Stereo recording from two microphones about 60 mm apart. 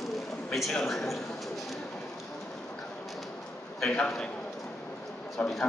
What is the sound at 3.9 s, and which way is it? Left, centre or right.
Speech, centre.